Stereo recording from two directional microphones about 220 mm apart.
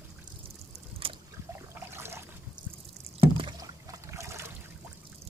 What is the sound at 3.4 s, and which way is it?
Boat, 15° right (ahead or behind).